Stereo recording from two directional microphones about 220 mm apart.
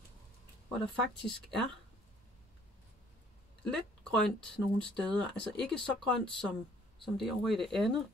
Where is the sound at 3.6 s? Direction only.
5° left (ahead or behind).